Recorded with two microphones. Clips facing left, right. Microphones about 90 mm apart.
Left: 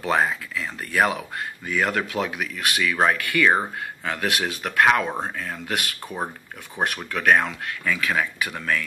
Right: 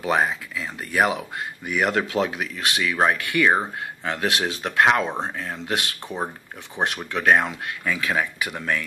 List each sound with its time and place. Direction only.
0.0 s speech: 20° right (ahead or behind)